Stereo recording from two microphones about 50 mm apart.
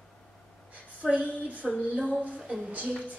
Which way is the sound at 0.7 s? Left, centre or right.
Right.